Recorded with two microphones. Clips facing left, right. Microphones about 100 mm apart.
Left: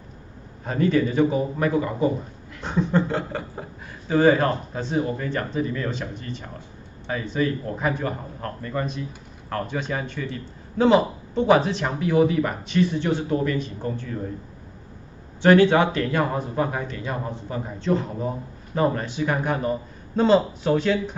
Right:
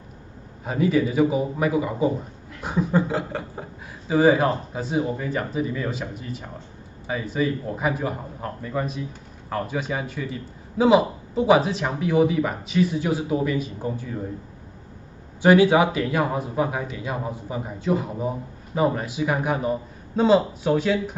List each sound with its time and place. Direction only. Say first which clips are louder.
0.7 s a man's voice: even; 5° right (ahead or behind)
15.4 s a man's voice: even; 10° right (ahead or behind)